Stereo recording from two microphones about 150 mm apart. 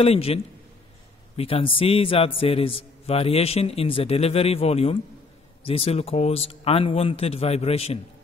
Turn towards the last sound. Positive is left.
turn(degrees=40)  # may be behind; listen again after turning